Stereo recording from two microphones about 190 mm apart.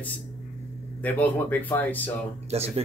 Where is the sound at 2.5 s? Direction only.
35° right (ahead or behind).